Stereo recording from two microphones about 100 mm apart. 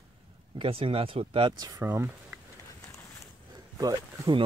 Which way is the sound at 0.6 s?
65° right (ahead or behind).